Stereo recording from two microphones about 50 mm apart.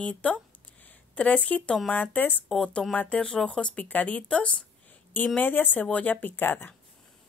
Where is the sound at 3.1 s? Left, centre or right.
Centre.